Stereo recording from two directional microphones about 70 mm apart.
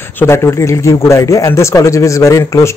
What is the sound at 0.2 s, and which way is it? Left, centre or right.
Speech, left.